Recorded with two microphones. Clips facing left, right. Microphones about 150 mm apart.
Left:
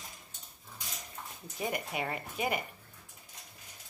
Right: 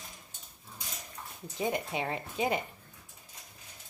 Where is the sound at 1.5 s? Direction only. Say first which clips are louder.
Right 3 dB; 25° right (ahead or behind).